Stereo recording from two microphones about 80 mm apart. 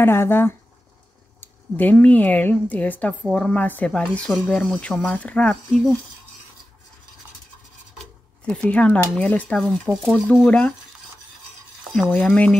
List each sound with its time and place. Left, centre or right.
0.0 s speech: left
8.0 s dishes: centre
9.9 s speech: centre
10.3 s speech: centre
11.9 s speech: centre